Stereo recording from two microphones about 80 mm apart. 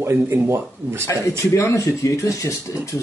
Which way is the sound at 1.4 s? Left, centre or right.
Left.